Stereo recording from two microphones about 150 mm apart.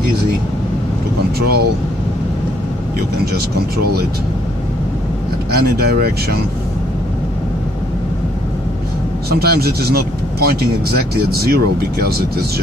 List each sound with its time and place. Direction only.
1.4 s speech: 90° right
3.3 s speech: 90° right
5.6 s speech: 90° right
9.3 s speech: 90° right